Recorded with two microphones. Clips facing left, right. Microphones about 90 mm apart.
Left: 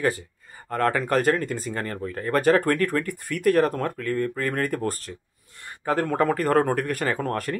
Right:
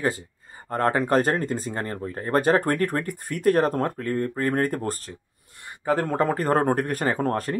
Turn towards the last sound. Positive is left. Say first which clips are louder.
# right 2 dB
turn(degrees=-25)  # may be behind; listen again after turning